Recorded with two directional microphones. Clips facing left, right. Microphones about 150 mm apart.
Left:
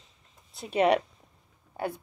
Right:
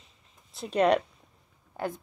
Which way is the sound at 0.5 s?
5° left (ahead or behind).